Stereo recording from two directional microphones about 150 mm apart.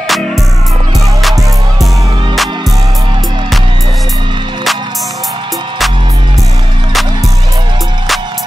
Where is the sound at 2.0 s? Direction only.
30° right (ahead or behind).